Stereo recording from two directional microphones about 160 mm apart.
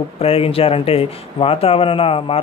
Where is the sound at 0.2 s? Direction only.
35° left (ahead or behind).